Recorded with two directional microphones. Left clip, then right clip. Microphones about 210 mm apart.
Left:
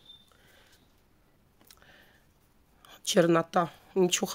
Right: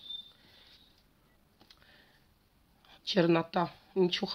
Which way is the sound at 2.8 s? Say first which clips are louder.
Left 4 dB; 45° left (ahead or behind).